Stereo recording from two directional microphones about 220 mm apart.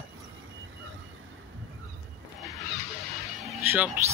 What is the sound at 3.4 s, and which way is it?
Speech, 5° right (ahead or behind).